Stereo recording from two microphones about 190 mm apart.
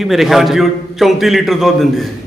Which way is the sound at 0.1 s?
Centre (ahead or behind).